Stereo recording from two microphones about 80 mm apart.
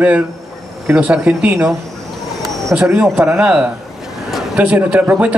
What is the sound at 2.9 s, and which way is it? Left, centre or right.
Speech, right.